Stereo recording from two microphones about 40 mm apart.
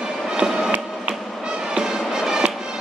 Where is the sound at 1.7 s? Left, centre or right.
Right.